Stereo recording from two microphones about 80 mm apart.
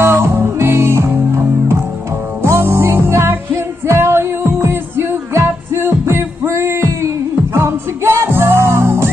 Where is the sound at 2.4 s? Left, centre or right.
Right.